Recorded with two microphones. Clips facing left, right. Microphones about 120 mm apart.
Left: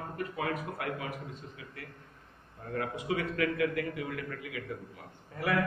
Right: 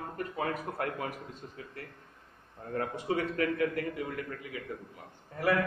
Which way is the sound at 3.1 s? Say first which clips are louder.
Right 1 dB; 35° right (ahead or behind).